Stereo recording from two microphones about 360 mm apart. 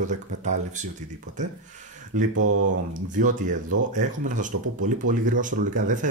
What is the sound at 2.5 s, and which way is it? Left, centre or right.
Speech, right.